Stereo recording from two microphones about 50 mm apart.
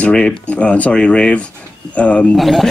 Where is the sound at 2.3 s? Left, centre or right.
Centre.